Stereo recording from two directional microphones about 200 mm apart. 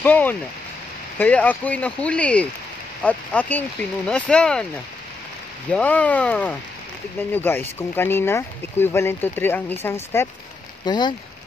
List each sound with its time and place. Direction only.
0.0 s speech: 10° left (ahead or behind)
5.7 s speech: 5° left (ahead or behind)
10.9 s speech: 20° left (ahead or behind)